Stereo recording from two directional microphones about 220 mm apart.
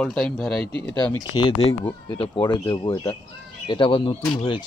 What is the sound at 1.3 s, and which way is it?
Speech, 25° left (ahead or behind).